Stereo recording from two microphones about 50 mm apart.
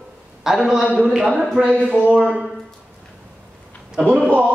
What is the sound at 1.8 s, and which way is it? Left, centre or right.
Speech, right.